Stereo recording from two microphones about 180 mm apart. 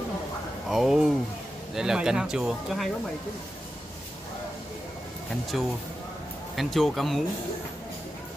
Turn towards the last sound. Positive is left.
turn(degrees=0)  # may be behind; listen again after turning